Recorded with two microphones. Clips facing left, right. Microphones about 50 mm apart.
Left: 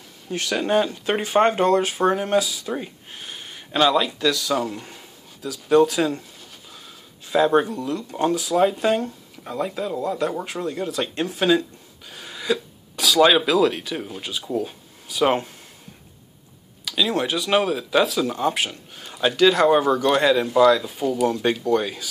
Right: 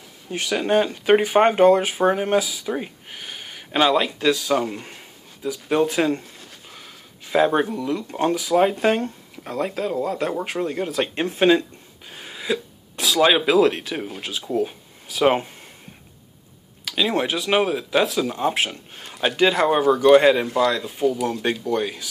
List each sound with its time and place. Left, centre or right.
0.3 s speech: centre
2.6 s a sound: right
4.3 s speech: right
7.2 s speech: right
12.1 s a sound: right
13.6 s speech: right
16.9 s speech: right; by 18.5 s centre
18.5 s speech: right; by 20.0 s centre
20.0 s speech: right
20.5 s speech: centre